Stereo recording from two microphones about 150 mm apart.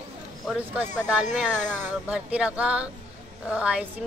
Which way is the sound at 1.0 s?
5° right (ahead or behind).